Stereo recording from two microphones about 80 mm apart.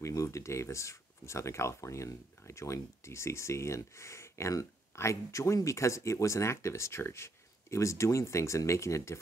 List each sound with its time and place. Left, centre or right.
0.0 s speech: left